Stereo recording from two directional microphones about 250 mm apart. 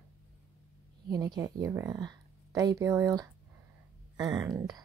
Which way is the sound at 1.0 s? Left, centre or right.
Centre.